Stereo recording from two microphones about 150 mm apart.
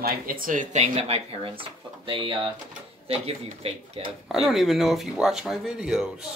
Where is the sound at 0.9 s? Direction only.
40° right (ahead or behind).